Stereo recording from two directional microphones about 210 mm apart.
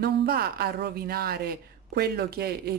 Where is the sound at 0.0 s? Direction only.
50° right (ahead or behind).